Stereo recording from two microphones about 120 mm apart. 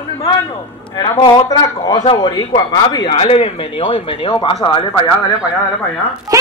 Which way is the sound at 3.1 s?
55° left (ahead or behind).